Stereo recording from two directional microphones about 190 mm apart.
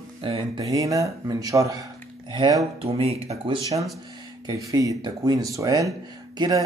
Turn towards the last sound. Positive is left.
turn(degrees=-20)  # may be behind; listen again after turning